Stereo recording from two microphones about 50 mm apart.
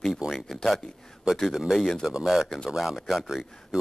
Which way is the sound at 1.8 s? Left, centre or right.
Centre.